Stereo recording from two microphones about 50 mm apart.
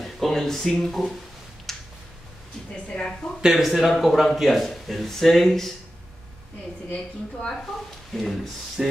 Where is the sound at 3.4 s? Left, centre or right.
Centre.